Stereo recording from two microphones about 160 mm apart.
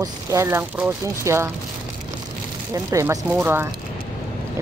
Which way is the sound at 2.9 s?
15° right (ahead or behind).